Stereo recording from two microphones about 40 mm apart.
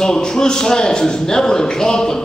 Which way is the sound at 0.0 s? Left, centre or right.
Centre.